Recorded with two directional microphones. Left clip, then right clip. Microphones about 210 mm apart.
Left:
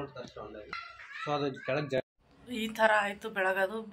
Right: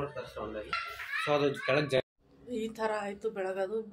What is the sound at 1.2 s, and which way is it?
Speech, 40° left (ahead or behind).